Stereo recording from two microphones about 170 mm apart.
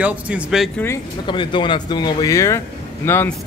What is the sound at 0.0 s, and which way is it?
Speech, 10° right (ahead or behind).